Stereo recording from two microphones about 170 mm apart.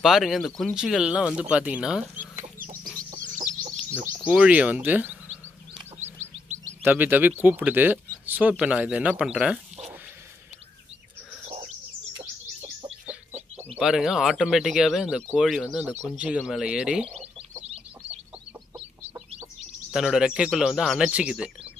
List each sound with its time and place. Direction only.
0.0 s speech: centre (ahead or behind)
2.1 s chicken: 50° right (ahead or behind)
3.3 s bird: 50° right (ahead or behind)
4.3 s speech: 10° right (ahead or behind)
6.8 s speech: 10° right (ahead or behind)
11.4 s bird: 40° right (ahead or behind)
13.7 s speech: 5° right (ahead or behind)
19.9 s speech: 5° right (ahead or behind)